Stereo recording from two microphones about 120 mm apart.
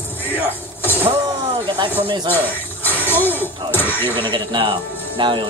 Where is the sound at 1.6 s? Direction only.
40° right (ahead or behind).